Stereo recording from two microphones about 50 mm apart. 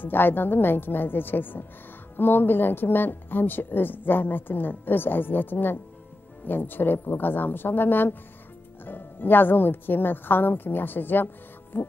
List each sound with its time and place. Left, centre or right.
0.0 s a woman's voice: left
11.7 s music: left